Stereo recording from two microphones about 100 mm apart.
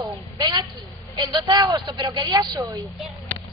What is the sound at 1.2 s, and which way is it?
Speech, 45° right (ahead or behind).